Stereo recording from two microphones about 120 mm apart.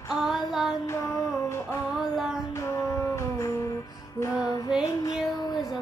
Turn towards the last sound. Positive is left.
turn(degrees=30)  # may be behind; listen again after turning